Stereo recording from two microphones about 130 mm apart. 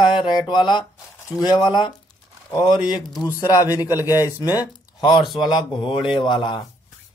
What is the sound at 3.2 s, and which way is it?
Speech, 25° left (ahead or behind).